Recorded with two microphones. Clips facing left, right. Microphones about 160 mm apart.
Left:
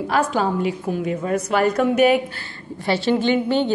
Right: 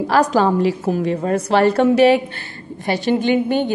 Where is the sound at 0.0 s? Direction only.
40° right (ahead or behind).